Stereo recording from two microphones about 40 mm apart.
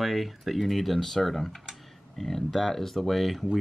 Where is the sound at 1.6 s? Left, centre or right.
Centre.